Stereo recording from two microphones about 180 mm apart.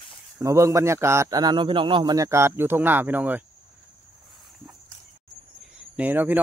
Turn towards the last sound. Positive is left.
turn(degrees=-10)  # may be behind; listen again after turning